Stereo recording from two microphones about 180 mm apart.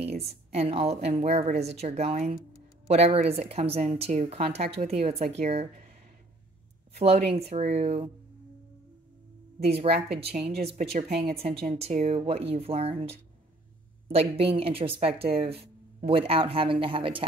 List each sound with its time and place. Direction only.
0.2 s a woman's voice: 35° right (ahead or behind)
7.0 s a woman's voice: 35° right (ahead or behind)
9.6 s a woman's voice: 35° right (ahead or behind)